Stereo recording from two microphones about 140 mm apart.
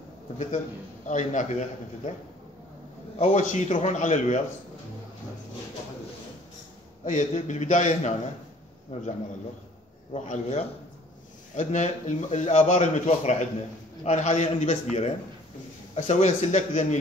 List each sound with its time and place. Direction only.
1.0 s a man's voice: 65° left (ahead or behind)
3.2 s a man's voice: 60° left (ahead or behind)
7.1 s a man's voice: 60° left (ahead or behind)
10.1 s a man's voice: 55° left (ahead or behind)